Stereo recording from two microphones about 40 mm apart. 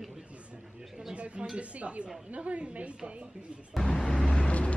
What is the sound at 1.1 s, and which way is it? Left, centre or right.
A woman's voice, right.